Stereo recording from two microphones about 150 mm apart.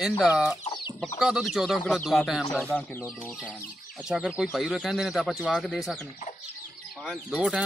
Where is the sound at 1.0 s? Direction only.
5° right (ahead or behind).